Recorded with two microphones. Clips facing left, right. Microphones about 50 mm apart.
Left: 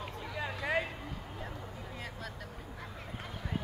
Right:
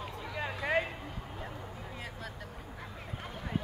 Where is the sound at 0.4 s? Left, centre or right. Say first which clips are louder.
Right 2 dB; right.